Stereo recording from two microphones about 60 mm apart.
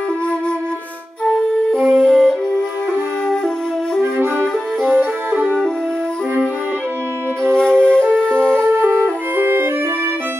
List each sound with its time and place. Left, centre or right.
1.2 s flute: centre
1.8 s music: centre
4.8 s music: right
7.4 s flute: centre
9.4 s music: right